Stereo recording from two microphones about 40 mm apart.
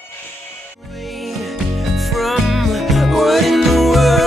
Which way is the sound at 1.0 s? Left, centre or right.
Centre.